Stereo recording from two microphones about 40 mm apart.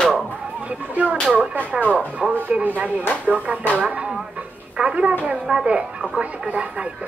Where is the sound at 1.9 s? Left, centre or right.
Right.